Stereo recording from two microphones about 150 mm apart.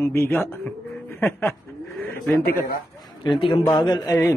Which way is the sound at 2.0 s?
10° left (ahead or behind).